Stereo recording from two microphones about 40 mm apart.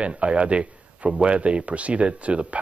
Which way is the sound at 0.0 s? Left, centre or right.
Right.